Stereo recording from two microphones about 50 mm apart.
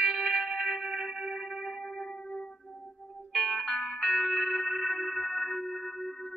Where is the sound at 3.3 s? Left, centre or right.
Centre.